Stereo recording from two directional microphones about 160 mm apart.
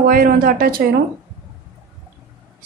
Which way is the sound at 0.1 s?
65° right (ahead or behind).